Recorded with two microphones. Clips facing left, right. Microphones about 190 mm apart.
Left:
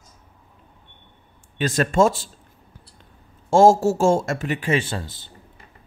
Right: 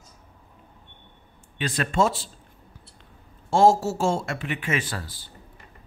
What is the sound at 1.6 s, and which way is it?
Speech, 45° left (ahead or behind).